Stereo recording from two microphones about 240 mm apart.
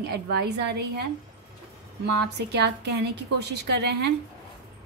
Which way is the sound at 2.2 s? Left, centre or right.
Right.